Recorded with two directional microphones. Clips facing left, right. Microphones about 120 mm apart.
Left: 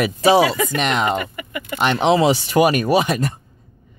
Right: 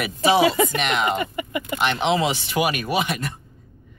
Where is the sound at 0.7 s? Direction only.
35° left (ahead or behind).